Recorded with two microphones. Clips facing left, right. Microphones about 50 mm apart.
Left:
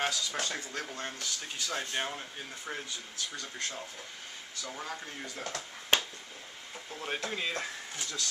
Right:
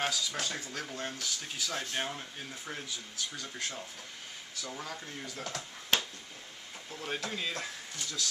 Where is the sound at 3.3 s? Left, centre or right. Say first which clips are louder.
Left 2 dB; centre.